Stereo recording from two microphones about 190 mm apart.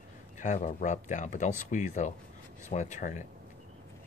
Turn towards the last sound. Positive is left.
turn(degrees=40)  # may be behind; listen again after turning